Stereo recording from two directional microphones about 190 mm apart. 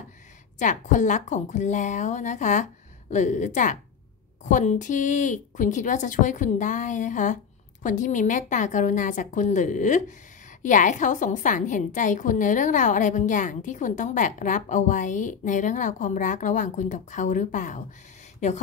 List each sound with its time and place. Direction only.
0.6 s a woman's voice: 40° left (ahead or behind)